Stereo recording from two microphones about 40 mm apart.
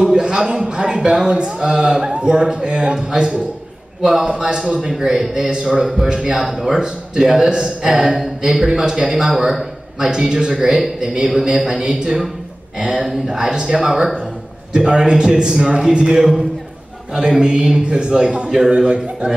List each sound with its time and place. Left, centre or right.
0.1 s a sound: right
0.7 s a man's voice: centre
6.3 s a sound: centre
6.8 s a man's voice: centre
8.0 s a sound: centre
8.6 s a man's voice: centre
10.1 s a man's voice: centre
16.2 s a man's voice: centre
17.1 s a man's voice: centre